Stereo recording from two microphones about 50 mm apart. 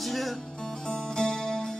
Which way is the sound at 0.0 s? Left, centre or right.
Centre.